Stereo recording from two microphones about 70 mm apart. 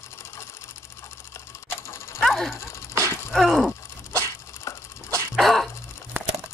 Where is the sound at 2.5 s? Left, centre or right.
Left.